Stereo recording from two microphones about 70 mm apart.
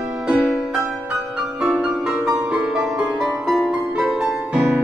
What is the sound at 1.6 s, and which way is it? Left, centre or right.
Music, centre.